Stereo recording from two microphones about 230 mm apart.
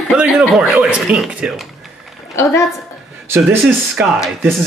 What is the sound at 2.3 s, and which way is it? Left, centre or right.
Speech, centre.